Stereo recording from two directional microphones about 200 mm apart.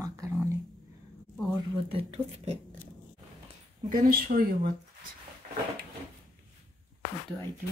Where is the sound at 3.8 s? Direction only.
45° right (ahead or behind).